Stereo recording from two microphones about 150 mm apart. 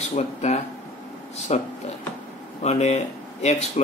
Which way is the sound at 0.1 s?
50° left (ahead or behind).